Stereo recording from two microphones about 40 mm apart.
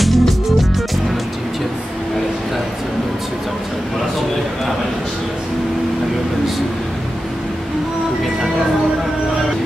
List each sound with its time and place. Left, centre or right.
0.0 s music: centre